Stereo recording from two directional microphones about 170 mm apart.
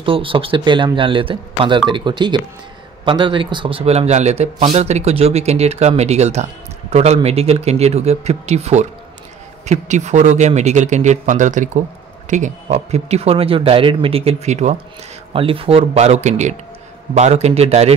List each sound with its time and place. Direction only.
0.0 s a man's voice: 30° right (ahead or behind)